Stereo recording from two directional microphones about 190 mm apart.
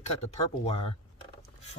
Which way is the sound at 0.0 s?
35° left (ahead or behind).